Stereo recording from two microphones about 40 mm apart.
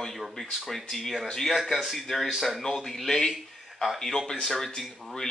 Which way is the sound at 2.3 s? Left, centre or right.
Centre.